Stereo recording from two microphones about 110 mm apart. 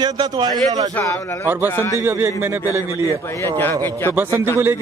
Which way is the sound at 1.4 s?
20° right (ahead or behind).